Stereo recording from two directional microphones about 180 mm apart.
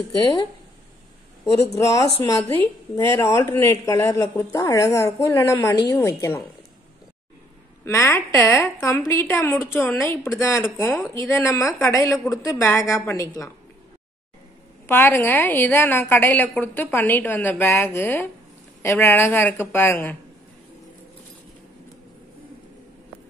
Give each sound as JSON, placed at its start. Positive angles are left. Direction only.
{"t": 1.8, "sound": "a woman's voice", "side_deg": 15}
{"t": 7.8, "sound": "a woman's voice", "side_deg": 15}
{"t": 14.9, "sound": "a woman's voice", "side_deg": 10}